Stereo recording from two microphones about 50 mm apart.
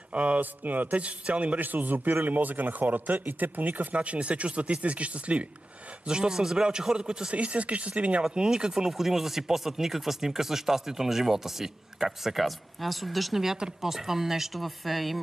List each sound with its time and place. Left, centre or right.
0.1 s speech: right
6.0 s speech: centre
8.2 s speech: centre